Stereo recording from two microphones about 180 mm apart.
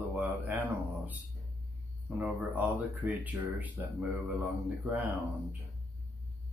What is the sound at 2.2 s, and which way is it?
Speech, 10° right (ahead or behind).